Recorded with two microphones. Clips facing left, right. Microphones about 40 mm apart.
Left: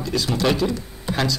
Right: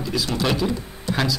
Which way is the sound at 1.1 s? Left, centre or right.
Left.